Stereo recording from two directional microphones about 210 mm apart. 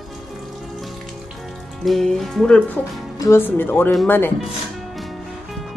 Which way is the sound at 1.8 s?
Centre (ahead or behind).